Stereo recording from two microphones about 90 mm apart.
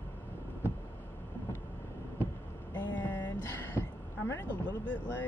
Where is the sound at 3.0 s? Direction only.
20° left (ahead or behind).